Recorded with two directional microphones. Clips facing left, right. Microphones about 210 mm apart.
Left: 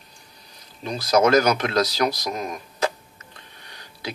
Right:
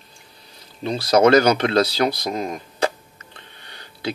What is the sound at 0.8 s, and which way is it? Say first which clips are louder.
Speech: right 3 dB; 30° right (ahead or behind).